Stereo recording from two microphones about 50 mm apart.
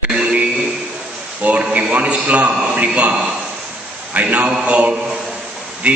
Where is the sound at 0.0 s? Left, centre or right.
Centre.